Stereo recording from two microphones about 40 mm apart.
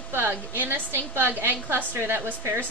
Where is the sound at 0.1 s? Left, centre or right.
Right.